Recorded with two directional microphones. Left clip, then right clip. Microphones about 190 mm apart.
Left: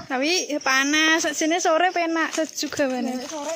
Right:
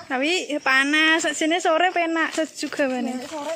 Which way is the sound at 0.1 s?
Centre (ahead or behind).